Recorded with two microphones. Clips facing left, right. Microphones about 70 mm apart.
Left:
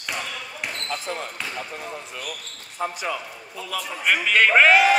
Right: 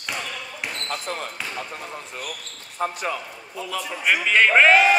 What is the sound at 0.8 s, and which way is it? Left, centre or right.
Basketball bounce, right.